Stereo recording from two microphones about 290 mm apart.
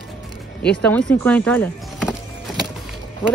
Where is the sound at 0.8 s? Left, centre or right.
Centre.